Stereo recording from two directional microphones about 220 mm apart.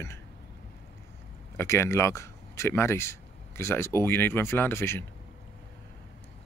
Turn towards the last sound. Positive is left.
turn(degrees=10)  # may be behind; listen again after turning